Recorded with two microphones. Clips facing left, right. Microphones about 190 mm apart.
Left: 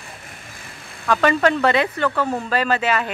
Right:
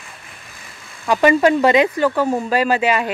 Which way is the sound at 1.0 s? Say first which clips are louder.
Right 4 dB; 10° right (ahead or behind).